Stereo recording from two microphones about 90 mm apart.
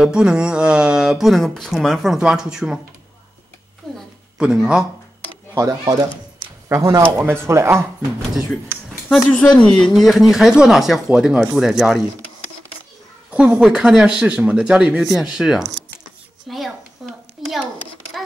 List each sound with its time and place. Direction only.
0.0 s speech: 10° right (ahead or behind)
3.8 s a sound: centre (ahead or behind)
4.4 s speech: 10° right (ahead or behind)
5.5 s speech: 30° right (ahead or behind)
7.0 s speech: 20° right (ahead or behind)
9.3 s speech: 10° left (ahead or behind); by 12.0 s 5° right (ahead or behind)
13.3 s speech: 10° right (ahead or behind)
16.4 s a sound: centre (ahead or behind)